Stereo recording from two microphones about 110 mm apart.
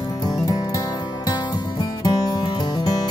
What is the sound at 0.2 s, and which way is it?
Music, 35° left (ahead or behind).